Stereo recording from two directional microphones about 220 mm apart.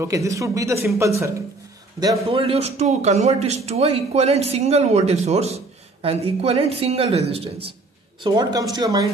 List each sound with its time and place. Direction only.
0.0 s speech: 15° right (ahead or behind)
2.2 s speech: 25° right (ahead or behind)